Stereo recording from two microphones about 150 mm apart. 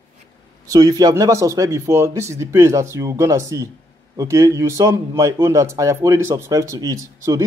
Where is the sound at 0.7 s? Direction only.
25° right (ahead or behind).